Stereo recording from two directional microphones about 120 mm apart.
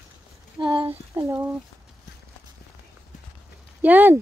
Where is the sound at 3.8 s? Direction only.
15° right (ahead or behind).